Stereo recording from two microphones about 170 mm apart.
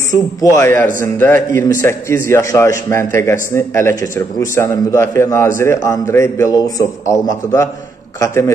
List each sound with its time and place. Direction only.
0.4 s a man's voice: 15° left (ahead or behind)